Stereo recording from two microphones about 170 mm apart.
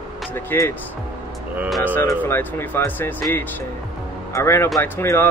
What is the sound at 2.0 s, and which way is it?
Speech, 15° left (ahead or behind).